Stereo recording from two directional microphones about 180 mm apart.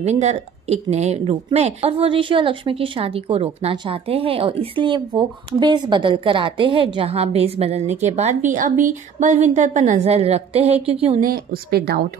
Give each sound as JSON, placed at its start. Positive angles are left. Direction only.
{"t": 0.0, "sound": "speech", "side_deg": -40}
{"t": 11.1, "sound": "speech", "side_deg": -55}